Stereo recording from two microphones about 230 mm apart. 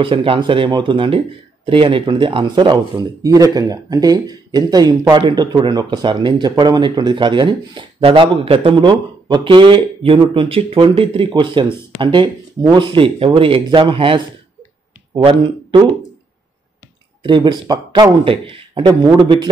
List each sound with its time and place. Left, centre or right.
0.0 s speech: right
17.2 s speech: centre